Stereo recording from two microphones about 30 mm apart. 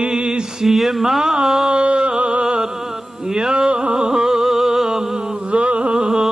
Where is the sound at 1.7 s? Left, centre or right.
Right.